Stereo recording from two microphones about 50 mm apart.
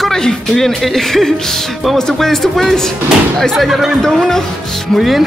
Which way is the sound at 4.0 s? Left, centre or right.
Centre.